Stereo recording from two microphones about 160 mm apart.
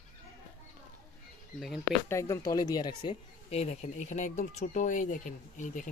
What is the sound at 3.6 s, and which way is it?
Speech, 45° left (ahead or behind).